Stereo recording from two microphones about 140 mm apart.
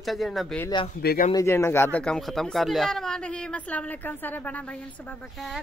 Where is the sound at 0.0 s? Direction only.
Centre (ahead or behind).